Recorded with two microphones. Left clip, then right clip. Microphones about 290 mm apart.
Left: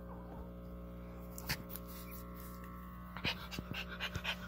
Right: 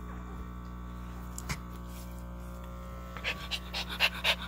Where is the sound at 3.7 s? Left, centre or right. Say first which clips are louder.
Right 13 dB; centre.